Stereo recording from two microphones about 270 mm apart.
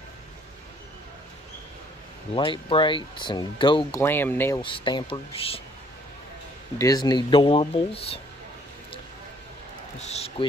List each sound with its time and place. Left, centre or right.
2.3 s speech: centre
6.8 s speech: centre
9.9 s speech: left